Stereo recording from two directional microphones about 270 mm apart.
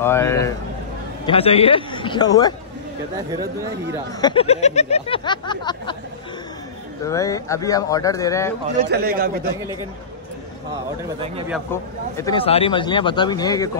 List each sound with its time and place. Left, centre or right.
0.0 s speech: centre
1.2 s speech: left
4.2 s speech: centre
7.1 s speech: centre
8.8 s a man's voice: right
11.7 s speech: centre